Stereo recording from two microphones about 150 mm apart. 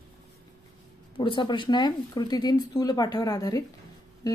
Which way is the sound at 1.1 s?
35° left (ahead or behind).